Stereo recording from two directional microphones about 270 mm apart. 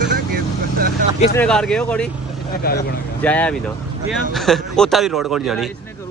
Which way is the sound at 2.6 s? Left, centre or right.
Left.